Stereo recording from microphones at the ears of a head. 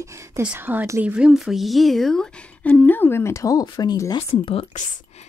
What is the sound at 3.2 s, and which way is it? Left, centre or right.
Speech, left.